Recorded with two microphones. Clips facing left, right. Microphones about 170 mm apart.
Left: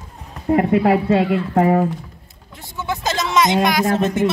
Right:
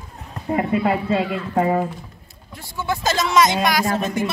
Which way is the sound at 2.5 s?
20° left (ahead or behind).